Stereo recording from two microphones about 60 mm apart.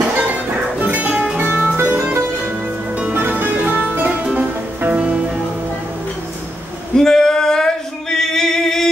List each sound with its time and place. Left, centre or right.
0.2 s music: right
3.2 s music: right; by 5.2 s centre
7.0 s male singing: centre